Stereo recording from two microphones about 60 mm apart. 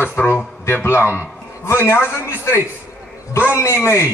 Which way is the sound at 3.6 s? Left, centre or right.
Left.